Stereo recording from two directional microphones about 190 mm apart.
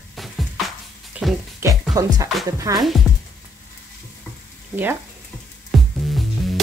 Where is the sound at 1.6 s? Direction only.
20° right (ahead or behind).